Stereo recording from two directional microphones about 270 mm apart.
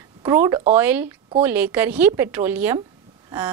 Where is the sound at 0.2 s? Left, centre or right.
Centre.